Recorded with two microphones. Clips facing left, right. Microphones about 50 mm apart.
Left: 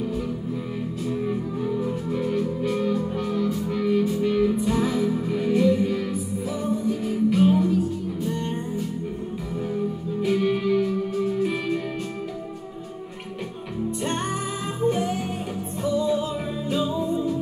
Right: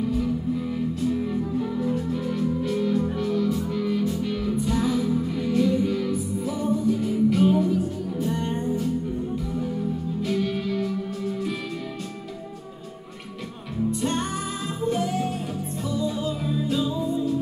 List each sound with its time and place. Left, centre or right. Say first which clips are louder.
1.6 s music: even; centre
10.2 s music: left 5 dB; centre
14.0 s music: even; left